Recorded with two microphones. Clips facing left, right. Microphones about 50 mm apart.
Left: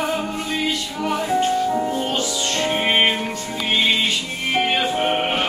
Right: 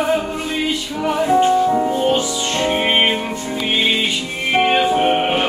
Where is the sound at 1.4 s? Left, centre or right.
Centre.